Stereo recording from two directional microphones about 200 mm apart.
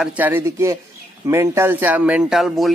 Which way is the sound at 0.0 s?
10° right (ahead or behind).